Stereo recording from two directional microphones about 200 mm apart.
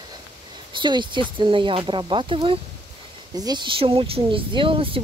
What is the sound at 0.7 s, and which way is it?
Speech, 25° right (ahead or behind).